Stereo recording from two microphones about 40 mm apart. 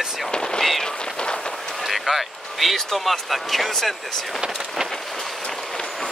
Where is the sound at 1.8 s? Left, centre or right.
Centre.